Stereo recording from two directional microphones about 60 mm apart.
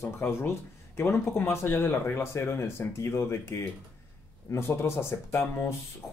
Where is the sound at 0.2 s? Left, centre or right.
Left.